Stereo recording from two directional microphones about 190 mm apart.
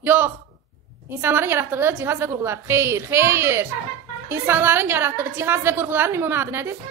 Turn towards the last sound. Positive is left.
turn(degrees=-15)  # may be behind; listen again after turning